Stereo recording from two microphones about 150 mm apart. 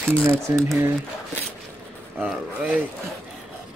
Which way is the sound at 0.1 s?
15° right (ahead or behind).